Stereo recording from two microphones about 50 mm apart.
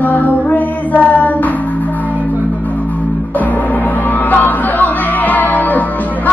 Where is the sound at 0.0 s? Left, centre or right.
Left.